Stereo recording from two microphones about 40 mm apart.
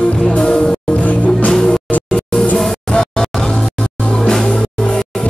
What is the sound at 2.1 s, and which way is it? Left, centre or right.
Music, centre.